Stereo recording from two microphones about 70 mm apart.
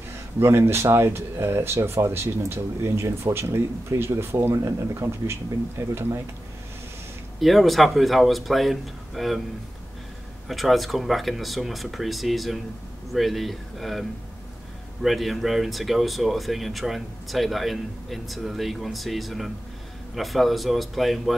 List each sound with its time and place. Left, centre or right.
0.4 s speech: right
7.3 s speech: centre
10.5 s speech: centre
15.0 s speech: centre